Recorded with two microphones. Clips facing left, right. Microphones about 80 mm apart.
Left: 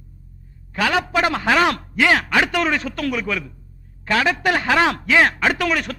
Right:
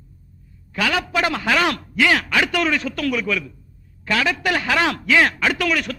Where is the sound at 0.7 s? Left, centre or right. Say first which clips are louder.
Left 2 dB; left.